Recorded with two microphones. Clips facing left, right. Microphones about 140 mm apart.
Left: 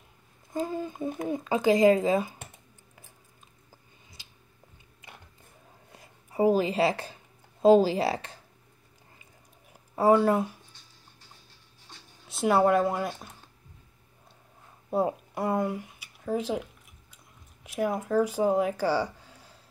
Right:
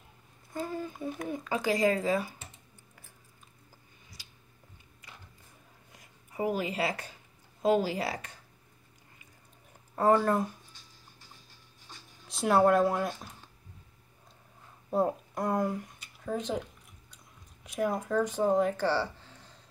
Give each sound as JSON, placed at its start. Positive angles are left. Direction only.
{"t": 0.5, "sound": "speech", "side_deg": 15}
{"t": 5.9, "sound": "a sound", "side_deg": 30}
{"t": 7.6, "sound": "speech", "side_deg": 30}
{"t": 9.7, "sound": "a sound", "side_deg": 10}
{"t": 11.9, "sound": "speech", "side_deg": 0}
{"t": 14.9, "sound": "speech", "side_deg": 5}
{"t": 17.6, "sound": "speech", "side_deg": 0}